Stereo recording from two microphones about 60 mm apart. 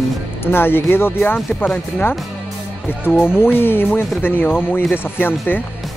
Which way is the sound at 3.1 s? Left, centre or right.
Left.